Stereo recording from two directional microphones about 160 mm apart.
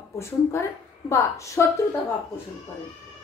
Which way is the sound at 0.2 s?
15° left (ahead or behind).